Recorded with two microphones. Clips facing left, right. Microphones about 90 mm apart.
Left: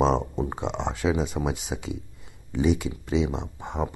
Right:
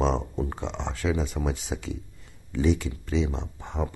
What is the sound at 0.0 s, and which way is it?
Speech, 15° left (ahead or behind).